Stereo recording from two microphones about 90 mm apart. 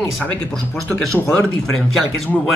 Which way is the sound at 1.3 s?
10° left (ahead or behind).